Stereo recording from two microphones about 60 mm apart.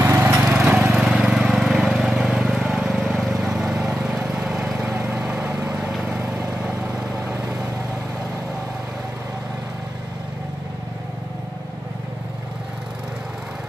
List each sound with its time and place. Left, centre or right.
0.0 s lawn mower: right
0.5 s lawn mower: centre
1.4 s vehicle: centre
3.2 s lawn mower: centre
4.9 s lawn mower: right
5.2 s vehicle: centre
5.6 s vehicle: right